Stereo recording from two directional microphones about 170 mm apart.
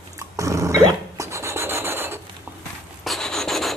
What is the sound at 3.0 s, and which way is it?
Rub, centre (ahead or behind).